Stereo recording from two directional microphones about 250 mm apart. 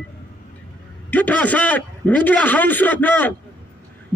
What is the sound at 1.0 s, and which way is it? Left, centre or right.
A man's voice, centre.